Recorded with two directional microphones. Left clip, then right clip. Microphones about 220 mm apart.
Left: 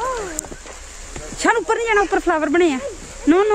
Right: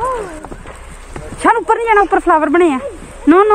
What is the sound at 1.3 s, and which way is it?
Speech, 5° left (ahead or behind).